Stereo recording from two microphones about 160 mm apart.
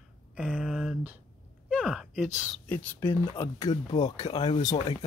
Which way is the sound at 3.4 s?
25° left (ahead or behind).